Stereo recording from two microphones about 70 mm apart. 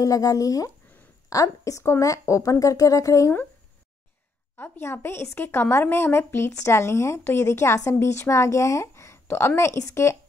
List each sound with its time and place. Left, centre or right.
0.0 s a woman's voice: left
4.6 s a woman's voice: left